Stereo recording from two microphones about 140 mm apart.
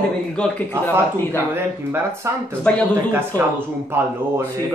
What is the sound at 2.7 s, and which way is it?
Speech, 10° left (ahead or behind).